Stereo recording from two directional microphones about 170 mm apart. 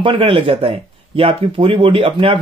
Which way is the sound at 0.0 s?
30° right (ahead or behind).